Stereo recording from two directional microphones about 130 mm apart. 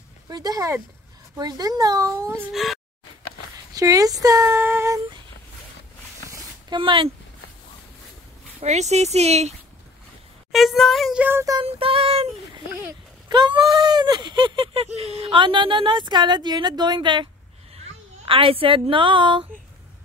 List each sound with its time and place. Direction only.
0.3 s speech: 30° right (ahead or behind)
2.5 s speech: centre (ahead or behind)
3.7 s speech: 25° right (ahead or behind)
6.7 s speech: 40° right (ahead or behind)
8.5 s speech: 60° right (ahead or behind)
10.5 s a child's voice: centre (ahead or behind)
11.6 s child singing: 50° right (ahead or behind)
13.3 s a woman's voice: 35° right (ahead or behind)